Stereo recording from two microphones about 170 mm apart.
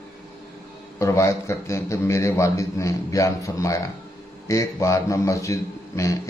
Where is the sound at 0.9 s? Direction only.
15° left (ahead or behind).